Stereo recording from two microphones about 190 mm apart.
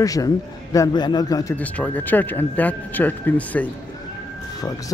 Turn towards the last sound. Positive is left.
turn(degrees=10)  # may be behind; listen again after turning